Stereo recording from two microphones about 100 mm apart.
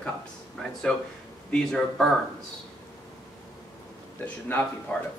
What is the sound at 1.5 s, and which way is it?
Speech, 5° left (ahead or behind).